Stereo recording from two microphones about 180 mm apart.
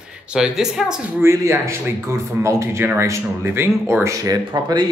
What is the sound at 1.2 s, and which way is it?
Speech, 15° right (ahead or behind).